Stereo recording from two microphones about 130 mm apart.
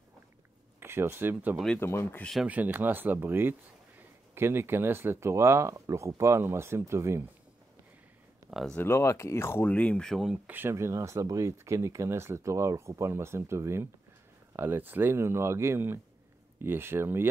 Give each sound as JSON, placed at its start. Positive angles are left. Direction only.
{"t": 0.7, "sound": "speech", "side_deg": -20}
{"t": 1.8, "sound": "speech", "side_deg": 20}
{"t": 2.4, "sound": "speech", "side_deg": -10}
{"t": 8.5, "sound": "speech", "side_deg": 0}
{"t": 8.7, "sound": "speech", "side_deg": 20}
{"t": 10.4, "sound": "speech", "side_deg": -15}